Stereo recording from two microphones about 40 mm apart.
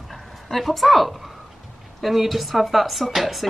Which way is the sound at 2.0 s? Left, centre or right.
Centre.